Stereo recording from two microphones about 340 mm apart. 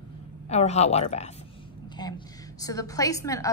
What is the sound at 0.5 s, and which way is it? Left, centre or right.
A woman's voice, centre.